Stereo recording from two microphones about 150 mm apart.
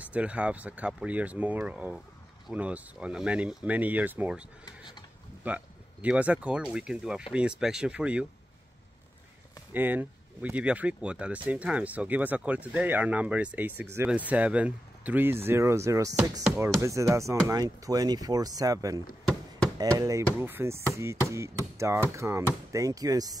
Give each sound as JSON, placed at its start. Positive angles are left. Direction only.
{"t": 0.0, "sound": "speech", "side_deg": -10}
{"t": 9.7, "sound": "speech", "side_deg": -10}
{"t": 16.8, "sound": "a sound", "side_deg": -20}